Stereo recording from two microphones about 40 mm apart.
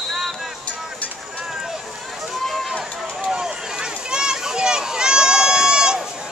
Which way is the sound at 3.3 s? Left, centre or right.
Centre.